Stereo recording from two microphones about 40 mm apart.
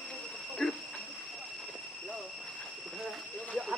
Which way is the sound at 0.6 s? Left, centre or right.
Centre.